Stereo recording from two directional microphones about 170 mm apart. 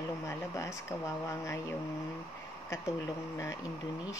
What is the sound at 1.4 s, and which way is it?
Speech, 15° left (ahead or behind).